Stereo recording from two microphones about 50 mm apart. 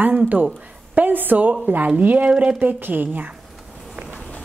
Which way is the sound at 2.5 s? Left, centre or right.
Right.